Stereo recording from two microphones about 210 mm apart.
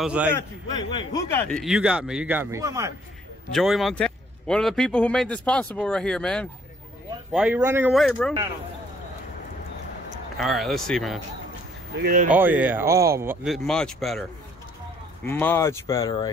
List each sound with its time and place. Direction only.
0.0 s a man's voice: 5° right (ahead or behind)
0.7 s a man's voice: 20° left (ahead or behind)
1.3 s a man's voice: centre (ahead or behind); by 2.9 s 15° right (ahead or behind)
3.5 s a man's voice: centre (ahead or behind)
7.9 s a man's voice: centre (ahead or behind)
10.3 s a man's voice: centre (ahead or behind)
11.9 s speech: 45° right (ahead or behind)
12.3 s speech: 10° right (ahead or behind)
15.2 s speech: 10° left (ahead or behind)